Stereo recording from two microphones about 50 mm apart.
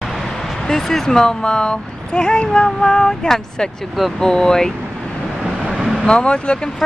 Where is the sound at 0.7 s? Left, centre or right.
Centre.